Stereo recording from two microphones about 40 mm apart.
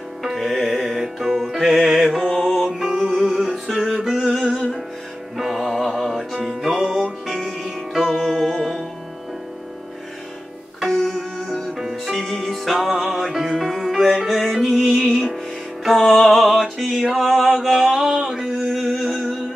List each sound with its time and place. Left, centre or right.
0.2 s music: centre
2.9 s music: centre
3.3 s music: centre
4.0 s a sound: centre
5.4 s mantra: centre
6.4 s music: centre
10.8 s music: centre
16.1 s music: centre
18.1 s a sound: centre
18.4 s a sound: centre